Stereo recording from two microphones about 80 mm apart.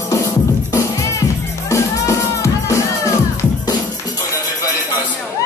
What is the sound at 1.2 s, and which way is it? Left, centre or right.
Music, left.